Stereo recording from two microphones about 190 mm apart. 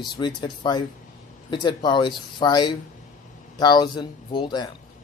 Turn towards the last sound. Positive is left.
turn(degrees=25)  # may be behind; listen again after turning